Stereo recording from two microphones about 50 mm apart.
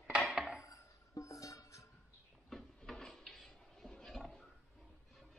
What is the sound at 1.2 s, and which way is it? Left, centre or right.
Music, left.